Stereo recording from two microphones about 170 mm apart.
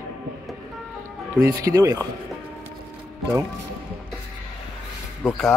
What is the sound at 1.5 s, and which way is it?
Speech, 20° right (ahead or behind).